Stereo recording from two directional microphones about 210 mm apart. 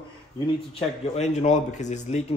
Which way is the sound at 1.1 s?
35° left (ahead or behind).